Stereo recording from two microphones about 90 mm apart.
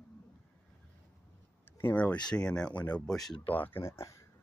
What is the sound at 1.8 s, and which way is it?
Speech, 20° left (ahead or behind).